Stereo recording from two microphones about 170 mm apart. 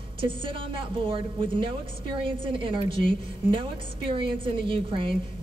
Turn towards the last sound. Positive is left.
turn(degrees=-30)  # may be behind; listen again after turning